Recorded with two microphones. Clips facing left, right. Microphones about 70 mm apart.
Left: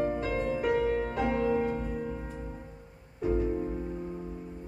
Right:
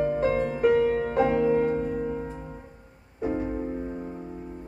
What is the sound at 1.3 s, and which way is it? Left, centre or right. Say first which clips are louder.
Music: right 3 dB; right.